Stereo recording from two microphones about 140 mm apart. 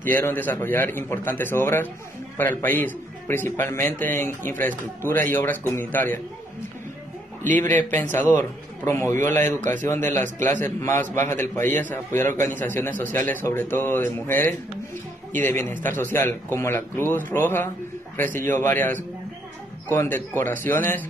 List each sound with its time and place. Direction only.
0.0 s a man's voice: 15° left (ahead or behind)
7.4 s a man's voice: 15° left (ahead or behind)